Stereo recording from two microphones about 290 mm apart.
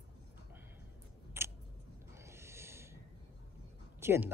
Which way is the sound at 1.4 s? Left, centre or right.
Centre.